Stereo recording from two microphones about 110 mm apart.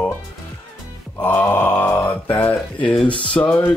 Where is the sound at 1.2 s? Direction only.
20° left (ahead or behind).